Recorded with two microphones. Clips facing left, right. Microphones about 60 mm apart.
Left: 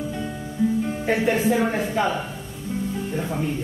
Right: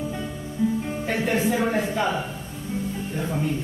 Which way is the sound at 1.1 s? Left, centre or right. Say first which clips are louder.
Left 3 dB; centre.